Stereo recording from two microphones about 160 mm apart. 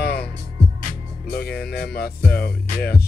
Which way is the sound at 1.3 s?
75° left (ahead or behind).